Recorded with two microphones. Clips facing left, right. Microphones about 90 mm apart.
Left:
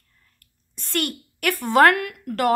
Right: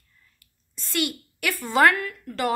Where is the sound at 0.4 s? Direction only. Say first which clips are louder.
Left 1 dB; 55° left (ahead or behind).